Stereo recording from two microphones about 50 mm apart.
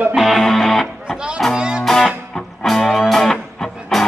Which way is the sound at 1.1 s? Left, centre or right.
Centre.